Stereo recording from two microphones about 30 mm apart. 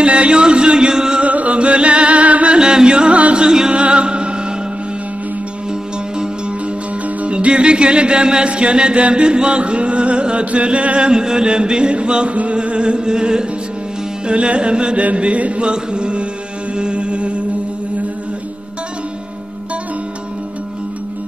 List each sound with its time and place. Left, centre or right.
0.0 s music: right
1.2 s music: right
1.6 s music: right
2.6 s music: right
7.2 s music: right
10.4 s chant: right
11.1 s music: right
14.2 s music: right
15.1 s chant: right
15.6 s music: right